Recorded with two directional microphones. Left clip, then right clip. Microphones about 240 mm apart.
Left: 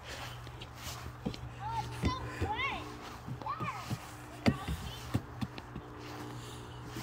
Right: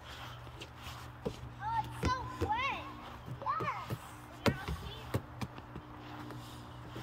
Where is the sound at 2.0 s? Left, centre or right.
Centre.